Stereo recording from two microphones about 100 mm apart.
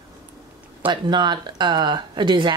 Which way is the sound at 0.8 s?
50° right (ahead or behind).